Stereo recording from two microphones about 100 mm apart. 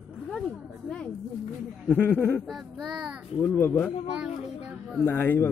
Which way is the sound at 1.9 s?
20° left (ahead or behind).